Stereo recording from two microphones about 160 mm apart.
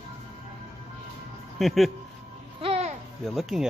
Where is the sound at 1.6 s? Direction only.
Centre (ahead or behind).